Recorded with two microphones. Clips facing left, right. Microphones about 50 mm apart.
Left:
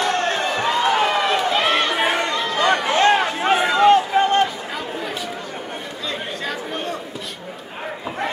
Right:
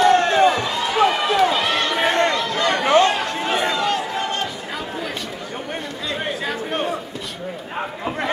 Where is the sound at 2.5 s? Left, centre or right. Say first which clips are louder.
Right 1 dB; left.